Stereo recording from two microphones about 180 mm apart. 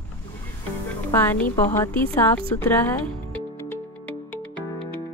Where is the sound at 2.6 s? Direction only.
10° left (ahead or behind).